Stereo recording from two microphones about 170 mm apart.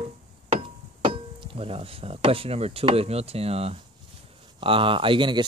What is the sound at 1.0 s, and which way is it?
Speech, 30° right (ahead or behind).